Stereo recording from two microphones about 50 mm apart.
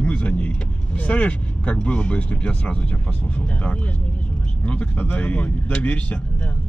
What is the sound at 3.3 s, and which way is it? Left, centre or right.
Speech, left.